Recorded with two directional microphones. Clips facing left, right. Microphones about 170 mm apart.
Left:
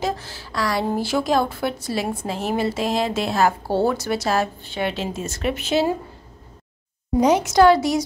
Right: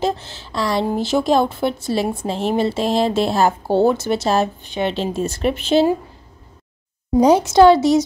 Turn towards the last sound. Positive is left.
turn(degrees=-25)  # may be behind; listen again after turning